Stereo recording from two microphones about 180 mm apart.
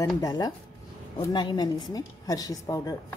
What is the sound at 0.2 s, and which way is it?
A woman's voice, 20° left (ahead or behind).